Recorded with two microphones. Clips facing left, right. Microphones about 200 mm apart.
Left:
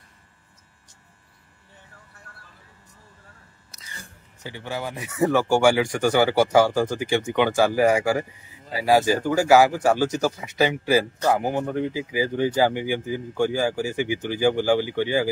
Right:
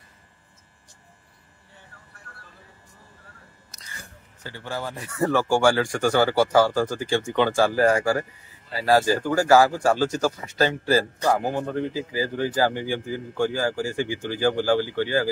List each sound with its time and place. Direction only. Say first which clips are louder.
4.4 s speech: left 1 dB; 15° left (ahead or behind)